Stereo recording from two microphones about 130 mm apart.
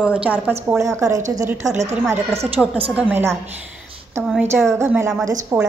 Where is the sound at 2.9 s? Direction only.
15° right (ahead or behind).